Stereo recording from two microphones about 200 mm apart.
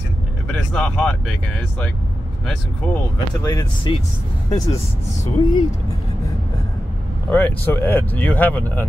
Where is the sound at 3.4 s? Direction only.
20° left (ahead or behind).